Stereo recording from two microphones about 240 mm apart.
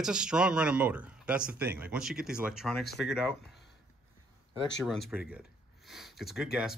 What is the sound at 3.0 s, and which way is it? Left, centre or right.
Speech, left.